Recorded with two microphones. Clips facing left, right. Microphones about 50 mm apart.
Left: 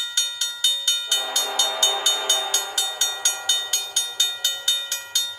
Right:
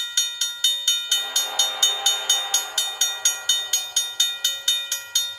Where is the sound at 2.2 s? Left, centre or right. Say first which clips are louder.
Left 1 dB; right.